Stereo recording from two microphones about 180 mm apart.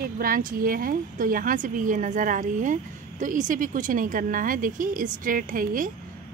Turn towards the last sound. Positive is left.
turn(degrees=-50)  # may be behind; listen again after turning